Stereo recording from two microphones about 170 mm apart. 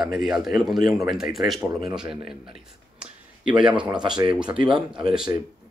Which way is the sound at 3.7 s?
25° right (ahead or behind).